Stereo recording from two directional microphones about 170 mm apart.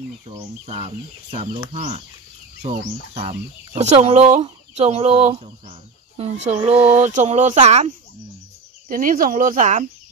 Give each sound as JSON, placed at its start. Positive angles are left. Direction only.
{"t": 0.7, "sound": "speech", "side_deg": -35}
{"t": 8.8, "sound": "speech", "side_deg": -55}